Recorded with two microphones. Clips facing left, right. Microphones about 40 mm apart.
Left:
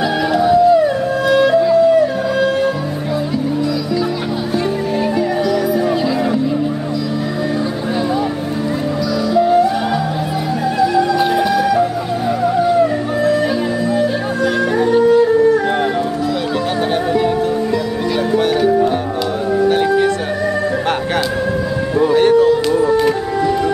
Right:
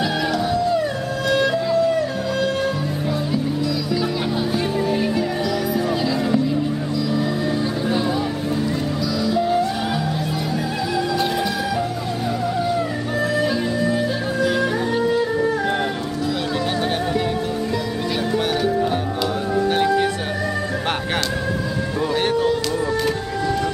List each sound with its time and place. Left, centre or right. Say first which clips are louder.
0.3 s music: left 13 dB; centre
9.4 s music: left 9 dB; centre
10.8 s music: left 9 dB; centre
13.9 s music: left 5 dB; centre
19.7 s music: left 3 dB; centre
22.7 s music: left 8 dB; centre